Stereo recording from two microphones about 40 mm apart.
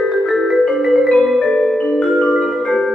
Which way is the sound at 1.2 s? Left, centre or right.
Centre.